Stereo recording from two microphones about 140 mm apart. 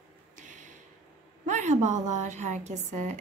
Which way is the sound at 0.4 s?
65° right (ahead or behind).